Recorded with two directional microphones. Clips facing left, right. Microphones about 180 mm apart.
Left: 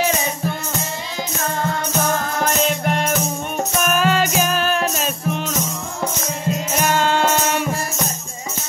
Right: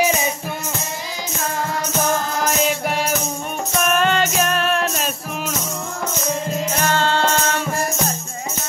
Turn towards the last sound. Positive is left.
turn(degrees=15)  # may be behind; listen again after turning